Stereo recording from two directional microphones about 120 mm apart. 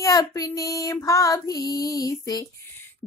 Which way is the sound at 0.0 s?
30° left (ahead or behind).